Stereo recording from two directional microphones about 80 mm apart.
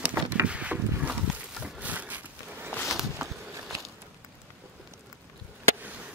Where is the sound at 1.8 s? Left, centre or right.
Centre.